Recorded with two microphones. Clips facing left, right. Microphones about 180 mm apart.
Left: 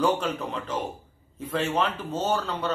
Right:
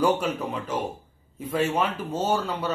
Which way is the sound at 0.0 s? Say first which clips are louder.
Right 1 dB; 10° right (ahead or behind).